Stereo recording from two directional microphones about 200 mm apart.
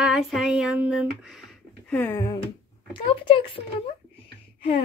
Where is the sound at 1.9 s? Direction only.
5° left (ahead or behind).